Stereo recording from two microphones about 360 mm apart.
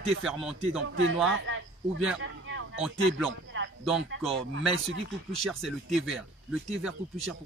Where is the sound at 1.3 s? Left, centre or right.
Right.